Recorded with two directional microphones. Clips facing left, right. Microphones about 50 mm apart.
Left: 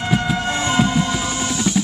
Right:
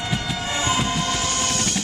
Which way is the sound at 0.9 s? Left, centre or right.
Right.